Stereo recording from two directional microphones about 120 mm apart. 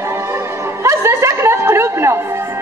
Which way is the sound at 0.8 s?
25° right (ahead or behind).